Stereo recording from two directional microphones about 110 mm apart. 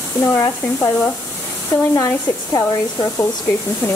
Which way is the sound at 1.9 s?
30° left (ahead or behind).